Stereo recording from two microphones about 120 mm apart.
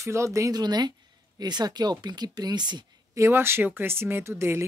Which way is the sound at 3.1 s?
20° right (ahead or behind).